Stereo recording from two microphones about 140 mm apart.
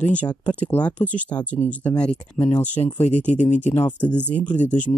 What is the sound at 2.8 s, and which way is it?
Speech, 55° left (ahead or behind).